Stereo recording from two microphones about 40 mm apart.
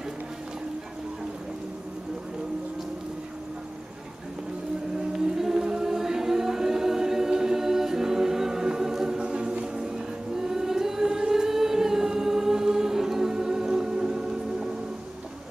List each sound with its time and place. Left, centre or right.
5.1 s music: centre
9.9 s choir: centre